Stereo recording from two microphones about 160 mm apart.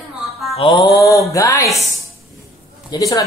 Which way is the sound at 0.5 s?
30° left (ahead or behind).